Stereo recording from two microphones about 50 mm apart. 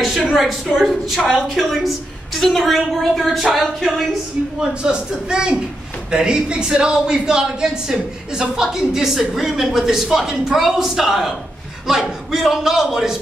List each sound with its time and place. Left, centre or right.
0.0 s a woman's voice: centre
4.6 s speech: centre